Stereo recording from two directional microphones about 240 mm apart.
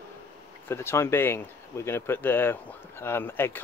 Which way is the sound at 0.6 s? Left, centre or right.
Centre.